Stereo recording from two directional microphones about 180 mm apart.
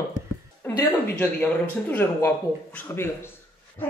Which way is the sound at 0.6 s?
15° left (ahead or behind).